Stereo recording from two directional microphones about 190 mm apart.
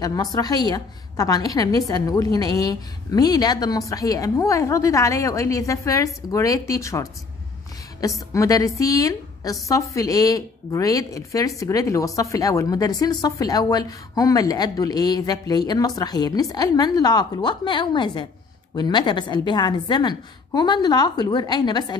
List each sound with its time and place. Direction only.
0.0 s a woman's voice: 20° left (ahead or behind)